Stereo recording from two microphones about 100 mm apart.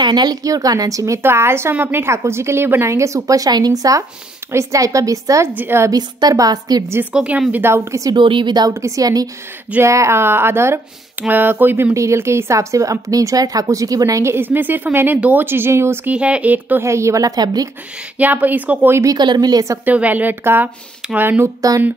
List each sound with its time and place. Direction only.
0.0 s a woman's voice: 45° right (ahead or behind)
5.5 s speech: 20° right (ahead or behind)
5.9 s a woman's voice: 40° right (ahead or behind)
6.9 s speech: 20° right (ahead or behind)
7.6 s a woman's voice: 30° right (ahead or behind)
8.2 s speech: 55° right (ahead or behind)
8.8 s a woman's voice: 35° right (ahead or behind)
16.2 s speech: 10° right (ahead or behind)
16.8 s a woman's voice: 30° right (ahead or behind)
18.1 s speech: 15° right (ahead or behind)
19.0 s a woman's voice: 45° right (ahead or behind)
19.8 s speech: 15° right (ahead or behind)
21.5 s a woman's voice: 35° right (ahead or behind)